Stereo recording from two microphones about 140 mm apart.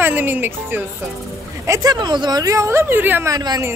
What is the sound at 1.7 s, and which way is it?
A woman's voice, 25° right (ahead or behind).